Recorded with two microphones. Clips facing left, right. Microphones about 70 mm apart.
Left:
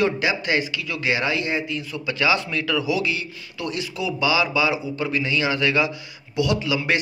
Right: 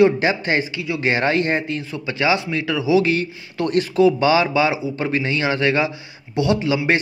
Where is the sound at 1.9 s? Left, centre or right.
Right.